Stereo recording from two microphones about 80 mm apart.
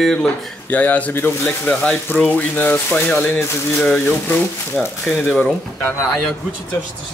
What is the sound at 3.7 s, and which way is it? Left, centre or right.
Speech, centre.